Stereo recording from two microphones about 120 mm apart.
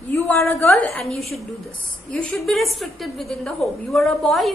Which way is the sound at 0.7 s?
5° left (ahead or behind).